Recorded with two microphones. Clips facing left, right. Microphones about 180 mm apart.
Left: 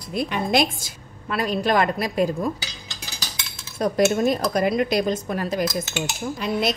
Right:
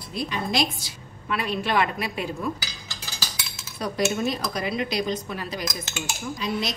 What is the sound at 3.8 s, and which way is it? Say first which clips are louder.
Speech: left 6 dB; 45° left (ahead or behind).